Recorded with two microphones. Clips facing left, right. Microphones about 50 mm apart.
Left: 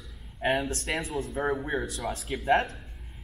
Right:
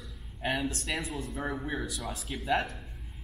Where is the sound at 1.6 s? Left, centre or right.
Left.